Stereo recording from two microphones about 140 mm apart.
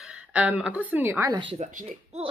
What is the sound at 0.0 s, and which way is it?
A woman's voice, 10° right (ahead or behind).